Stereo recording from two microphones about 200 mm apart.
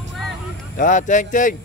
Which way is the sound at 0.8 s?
40° left (ahead or behind).